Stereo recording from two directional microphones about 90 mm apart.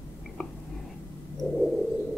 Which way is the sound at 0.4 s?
5° left (ahead or behind).